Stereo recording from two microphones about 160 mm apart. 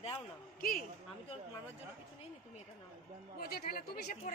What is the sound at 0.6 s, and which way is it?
Speech, 60° left (ahead or behind).